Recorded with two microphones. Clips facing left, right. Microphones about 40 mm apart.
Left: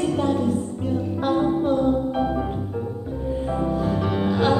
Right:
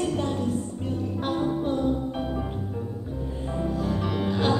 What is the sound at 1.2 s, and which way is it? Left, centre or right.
Music, centre.